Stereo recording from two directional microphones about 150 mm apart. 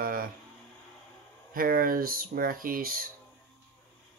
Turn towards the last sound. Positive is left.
turn(degrees=-70)  # may be behind; listen again after turning